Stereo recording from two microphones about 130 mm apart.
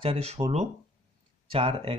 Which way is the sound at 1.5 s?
45° right (ahead or behind).